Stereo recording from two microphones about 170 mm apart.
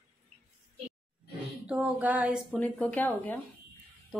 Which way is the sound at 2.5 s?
10° left (ahead or behind).